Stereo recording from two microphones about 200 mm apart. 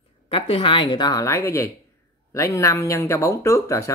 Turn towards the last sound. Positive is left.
turn(degrees=15)  # may be behind; listen again after turning